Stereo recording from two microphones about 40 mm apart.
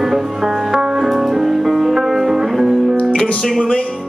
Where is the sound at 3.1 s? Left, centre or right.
Left.